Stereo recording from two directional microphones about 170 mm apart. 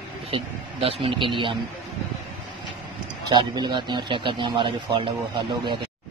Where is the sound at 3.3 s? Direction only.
25° right (ahead or behind).